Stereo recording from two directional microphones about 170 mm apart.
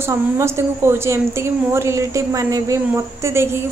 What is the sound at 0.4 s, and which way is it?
A woman's voice, 15° right (ahead or behind).